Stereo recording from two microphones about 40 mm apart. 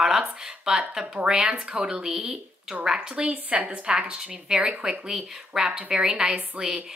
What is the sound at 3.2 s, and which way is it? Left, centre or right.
A woman's voice, right.